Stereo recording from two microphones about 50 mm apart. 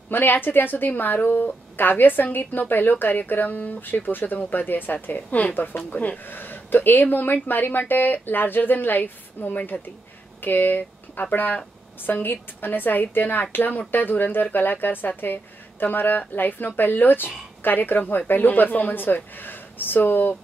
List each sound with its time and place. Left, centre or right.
0.1 s a woman's voice: left